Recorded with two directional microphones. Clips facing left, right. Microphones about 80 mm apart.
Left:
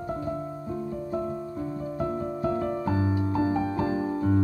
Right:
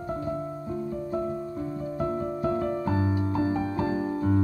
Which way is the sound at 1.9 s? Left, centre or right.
Centre.